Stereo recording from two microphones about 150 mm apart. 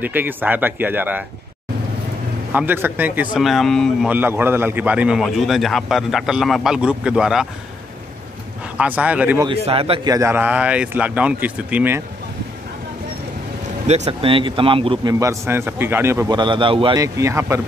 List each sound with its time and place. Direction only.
0.0 s speech: 15° right (ahead or behind)
2.5 s speech: 15° right (ahead or behind)
3.3 s a man's voice: centre (ahead or behind)
4.1 s a man's voice: 15° right (ahead or behind)
8.7 s speech: 10° right (ahead or behind)
9.5 s speech: 40° right (ahead or behind)
10.0 s speech: 20° right (ahead or behind)
13.8 s speech: 45° right (ahead or behind)
15.1 s speech: 20° right (ahead or behind)
16.3 s speech: 30° right (ahead or behind)
16.9 s speech: 20° right (ahead or behind)